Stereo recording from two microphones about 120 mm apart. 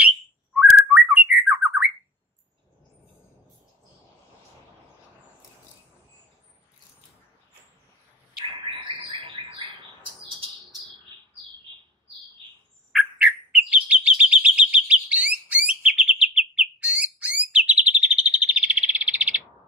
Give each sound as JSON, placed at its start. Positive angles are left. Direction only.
{"t": 0.6, "sound": "bird", "side_deg": -5}
{"t": 8.6, "sound": "bird", "side_deg": -50}
{"t": 12.9, "sound": "chirp", "side_deg": -5}